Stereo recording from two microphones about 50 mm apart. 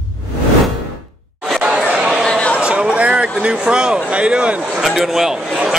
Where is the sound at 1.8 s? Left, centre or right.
Centre.